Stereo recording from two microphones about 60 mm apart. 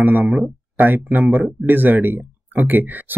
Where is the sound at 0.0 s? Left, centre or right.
Right.